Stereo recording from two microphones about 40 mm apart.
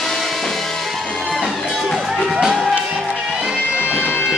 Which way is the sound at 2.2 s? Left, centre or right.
Centre.